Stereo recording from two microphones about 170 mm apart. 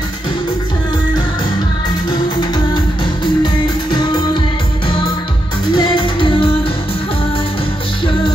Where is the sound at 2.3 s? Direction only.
25° left (ahead or behind).